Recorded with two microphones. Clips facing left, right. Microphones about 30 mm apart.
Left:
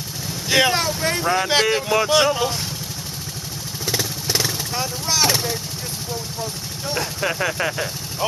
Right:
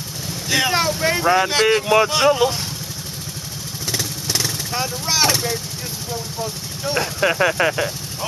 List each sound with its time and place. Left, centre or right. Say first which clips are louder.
0.5 s speech: left 2 dB; centre
0.7 s speech: right 3 dB; centre
3.8 s vehicle: left 1 dB; centre
4.7 s speech: right 2 dB; centre
6.4 s speech: right 2 dB; centre